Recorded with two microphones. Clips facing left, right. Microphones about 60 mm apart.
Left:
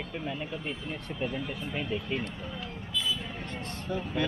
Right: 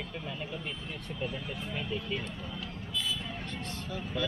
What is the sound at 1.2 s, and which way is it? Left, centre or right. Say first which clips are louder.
Speech: left 4 dB; left.